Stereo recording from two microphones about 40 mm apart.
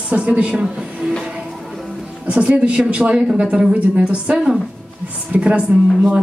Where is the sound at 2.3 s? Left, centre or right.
Right.